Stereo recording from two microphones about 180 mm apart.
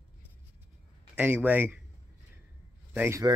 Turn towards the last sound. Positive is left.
turn(degrees=-15)  # may be behind; listen again after turning